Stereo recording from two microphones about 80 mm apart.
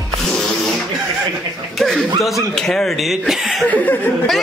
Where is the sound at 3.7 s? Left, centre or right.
Left.